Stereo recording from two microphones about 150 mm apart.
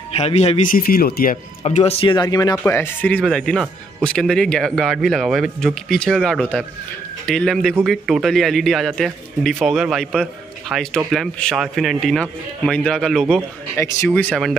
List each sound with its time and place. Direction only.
0.1 s speech: 45° left (ahead or behind)
0.7 s speech: 75° left (ahead or behind)
1.7 s speech: 45° left (ahead or behind); by 2.5 s 25° left (ahead or behind)
2.5 s speech: 15° left (ahead or behind)